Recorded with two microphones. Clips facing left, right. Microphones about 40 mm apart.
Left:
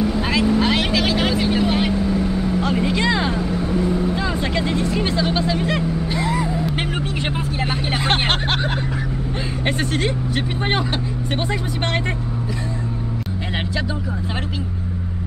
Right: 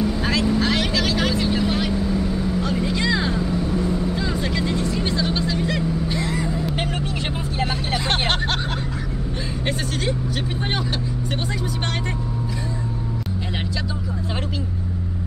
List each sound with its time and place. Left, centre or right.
0.0 s vehicle: centre
9.7 s vehicle: left